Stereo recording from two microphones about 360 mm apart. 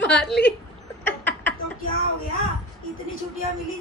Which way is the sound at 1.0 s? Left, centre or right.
Centre.